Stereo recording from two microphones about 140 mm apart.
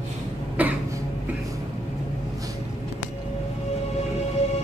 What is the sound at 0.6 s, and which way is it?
Cough, 10° right (ahead or behind).